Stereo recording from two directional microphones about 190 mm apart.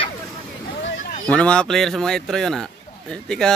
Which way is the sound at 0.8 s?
70° left (ahead or behind).